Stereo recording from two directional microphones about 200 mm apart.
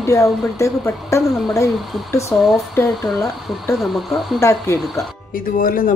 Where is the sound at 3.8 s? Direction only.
Centre (ahead or behind).